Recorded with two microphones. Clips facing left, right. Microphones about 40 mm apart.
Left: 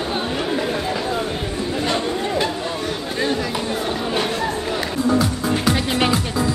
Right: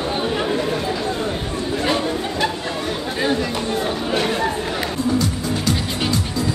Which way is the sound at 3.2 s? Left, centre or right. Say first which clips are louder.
Right 1 dB; centre.